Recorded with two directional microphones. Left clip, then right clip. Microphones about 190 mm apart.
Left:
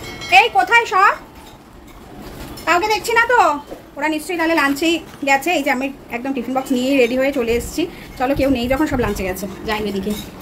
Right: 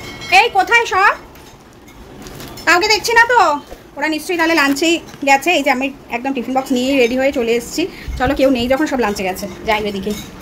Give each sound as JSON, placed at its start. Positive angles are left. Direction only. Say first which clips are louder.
{"t": 0.0, "sound": "speech", "louder": "right 1 dB", "side_deg": 0}
{"t": 2.6, "sound": "a woman's voice", "louder": "right 4 dB", "side_deg": -20}